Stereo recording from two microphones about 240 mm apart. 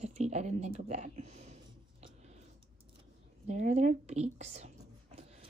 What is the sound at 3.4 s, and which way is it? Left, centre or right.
A woman's voice, right.